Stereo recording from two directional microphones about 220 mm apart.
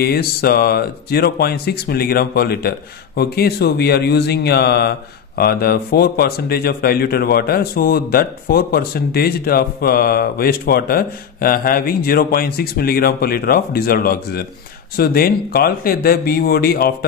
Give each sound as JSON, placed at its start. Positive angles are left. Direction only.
{"t": 0.0, "sound": "speech", "side_deg": 45}